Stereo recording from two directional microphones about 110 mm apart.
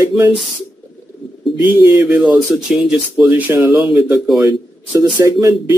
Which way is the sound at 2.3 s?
5° right (ahead or behind).